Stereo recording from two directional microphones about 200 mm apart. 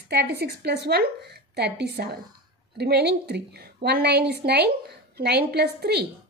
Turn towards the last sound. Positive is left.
turn(degrees=-55)  # may be behind; listen again after turning